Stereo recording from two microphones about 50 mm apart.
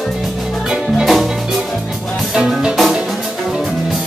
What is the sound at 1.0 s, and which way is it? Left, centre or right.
Music, centre.